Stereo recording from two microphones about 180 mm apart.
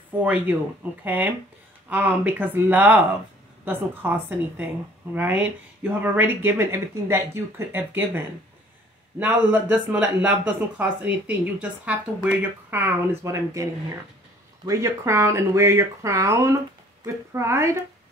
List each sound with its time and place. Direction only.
0.2 s speech: 10° right (ahead or behind)
9.2 s speech: 10° right (ahead or behind)
14.7 s speech: 15° right (ahead or behind)